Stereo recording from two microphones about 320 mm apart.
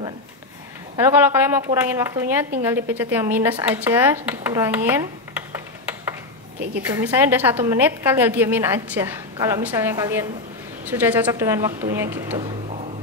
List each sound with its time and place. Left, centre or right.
0.9 s speech: centre
6.8 s a woman's voice: centre
12.4 s a sound: centre